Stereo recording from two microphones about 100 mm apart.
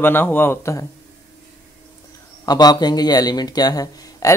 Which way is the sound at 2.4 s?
45° left (ahead or behind).